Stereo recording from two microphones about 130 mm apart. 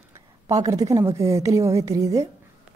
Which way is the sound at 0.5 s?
25° right (ahead or behind).